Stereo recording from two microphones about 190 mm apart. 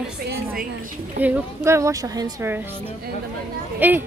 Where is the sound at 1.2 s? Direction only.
10° right (ahead or behind).